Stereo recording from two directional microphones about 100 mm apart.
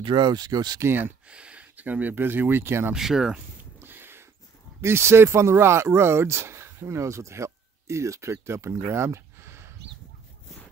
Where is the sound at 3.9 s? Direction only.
20° right (ahead or behind).